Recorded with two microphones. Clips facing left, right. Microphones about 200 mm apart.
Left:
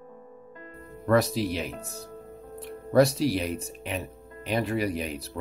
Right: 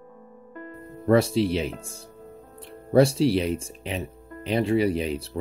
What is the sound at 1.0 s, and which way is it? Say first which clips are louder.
Speech: right 4 dB; 30° right (ahead or behind).